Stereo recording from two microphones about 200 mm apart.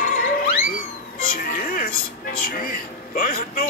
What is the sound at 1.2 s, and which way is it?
Music, 45° left (ahead or behind).